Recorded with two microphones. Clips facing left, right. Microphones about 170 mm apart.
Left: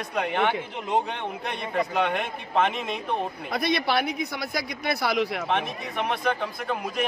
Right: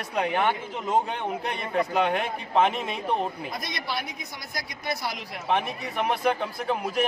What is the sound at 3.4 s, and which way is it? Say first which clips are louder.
A man's voice: left 8 dB; 65° left (ahead or behind).